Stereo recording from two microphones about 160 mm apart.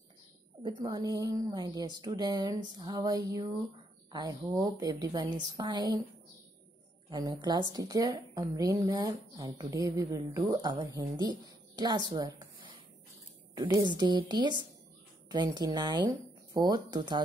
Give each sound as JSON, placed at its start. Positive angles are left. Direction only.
{"t": 0.6, "sound": "a woman's voice", "side_deg": -30}
{"t": 7.1, "sound": "a woman's voice", "side_deg": -25}
{"t": 13.6, "sound": "a woman's voice", "side_deg": -25}